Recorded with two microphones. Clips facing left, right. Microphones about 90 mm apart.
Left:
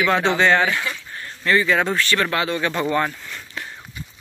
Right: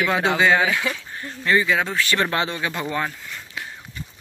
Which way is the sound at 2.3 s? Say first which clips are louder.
Left 2 dB; 25° right (ahead or behind).